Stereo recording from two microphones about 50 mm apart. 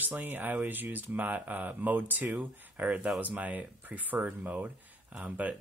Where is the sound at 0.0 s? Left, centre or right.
Right.